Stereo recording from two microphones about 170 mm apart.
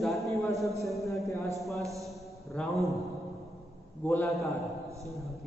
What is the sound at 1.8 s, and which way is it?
Speech, 20° right (ahead or behind).